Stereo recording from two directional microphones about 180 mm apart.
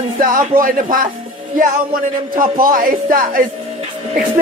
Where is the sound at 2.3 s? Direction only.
50° right (ahead or behind).